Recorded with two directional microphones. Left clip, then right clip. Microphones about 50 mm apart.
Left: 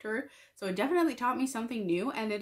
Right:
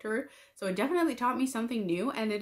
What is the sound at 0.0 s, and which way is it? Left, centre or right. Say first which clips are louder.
Speech: right 2 dB; right.